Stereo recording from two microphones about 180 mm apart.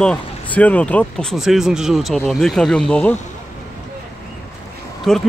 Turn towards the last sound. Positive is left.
turn(degrees=0)  # may be behind; listen again after turning